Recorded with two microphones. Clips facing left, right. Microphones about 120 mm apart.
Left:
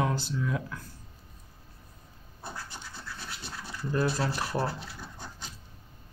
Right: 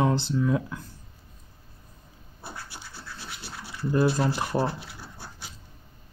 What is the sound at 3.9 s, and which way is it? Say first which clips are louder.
Speech: right 5 dB; 20° right (ahead or behind).